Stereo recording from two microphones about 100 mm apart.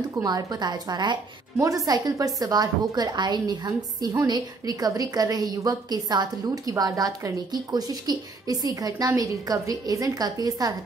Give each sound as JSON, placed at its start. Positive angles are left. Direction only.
{"t": 0.2, "sound": "a woman's voice", "side_deg": -40}